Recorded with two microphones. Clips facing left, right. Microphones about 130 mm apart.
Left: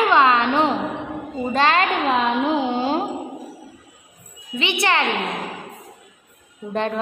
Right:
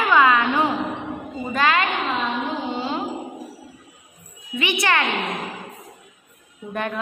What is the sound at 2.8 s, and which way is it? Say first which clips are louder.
Music: left 5 dB; 45° left (ahead or behind).